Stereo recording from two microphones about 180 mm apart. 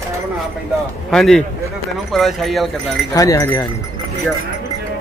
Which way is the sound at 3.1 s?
20° left (ahead or behind).